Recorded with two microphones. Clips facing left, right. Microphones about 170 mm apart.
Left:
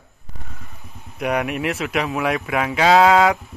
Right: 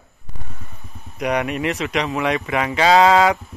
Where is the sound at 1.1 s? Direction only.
Centre (ahead or behind).